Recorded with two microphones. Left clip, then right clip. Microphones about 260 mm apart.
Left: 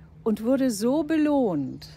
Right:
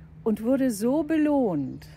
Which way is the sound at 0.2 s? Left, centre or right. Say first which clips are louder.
Left 1 dB; centre.